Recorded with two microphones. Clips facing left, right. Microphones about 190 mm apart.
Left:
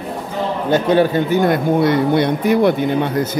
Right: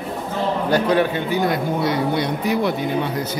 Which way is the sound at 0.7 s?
25° left (ahead or behind).